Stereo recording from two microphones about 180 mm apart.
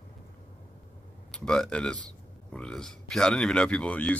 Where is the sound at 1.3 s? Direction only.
5° left (ahead or behind).